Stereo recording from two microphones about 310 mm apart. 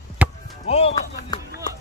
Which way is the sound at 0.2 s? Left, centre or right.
Centre.